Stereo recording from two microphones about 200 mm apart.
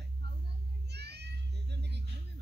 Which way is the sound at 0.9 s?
55° right (ahead or behind).